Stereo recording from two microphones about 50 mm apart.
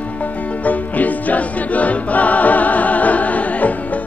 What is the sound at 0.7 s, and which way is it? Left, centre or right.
Music, left.